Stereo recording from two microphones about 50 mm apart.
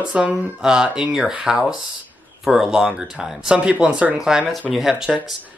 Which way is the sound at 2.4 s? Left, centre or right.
Centre.